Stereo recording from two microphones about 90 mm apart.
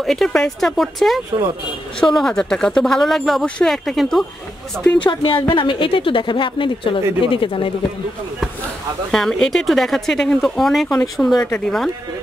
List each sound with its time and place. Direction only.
0.0 s speech: 5° left (ahead or behind)
4.9 s a woman's voice: 65° left (ahead or behind)
9.1 s speech: 5° left (ahead or behind)
11.2 s speech: 15° left (ahead or behind)
11.6 s speech: 5° left (ahead or behind)